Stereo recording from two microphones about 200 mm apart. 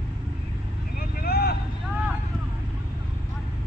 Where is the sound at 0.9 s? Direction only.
50° left (ahead or behind).